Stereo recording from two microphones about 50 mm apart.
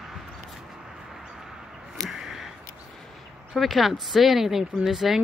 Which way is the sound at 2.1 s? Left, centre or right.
Centre.